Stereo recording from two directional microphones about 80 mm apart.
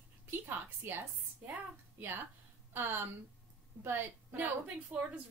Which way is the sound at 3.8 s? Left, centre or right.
Right.